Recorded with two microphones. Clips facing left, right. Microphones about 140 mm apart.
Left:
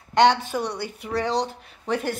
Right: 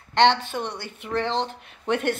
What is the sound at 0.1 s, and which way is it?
Speech, 10° left (ahead or behind).